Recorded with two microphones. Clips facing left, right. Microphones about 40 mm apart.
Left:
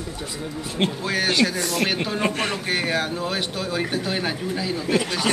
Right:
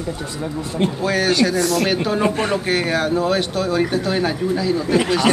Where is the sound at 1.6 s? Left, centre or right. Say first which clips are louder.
Right 5 dB; left.